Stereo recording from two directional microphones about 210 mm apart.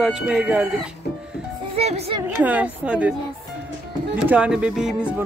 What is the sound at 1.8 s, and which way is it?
Speech, 30° right (ahead or behind).